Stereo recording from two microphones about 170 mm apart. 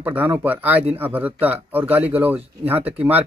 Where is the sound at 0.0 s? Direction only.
10° right (ahead or behind).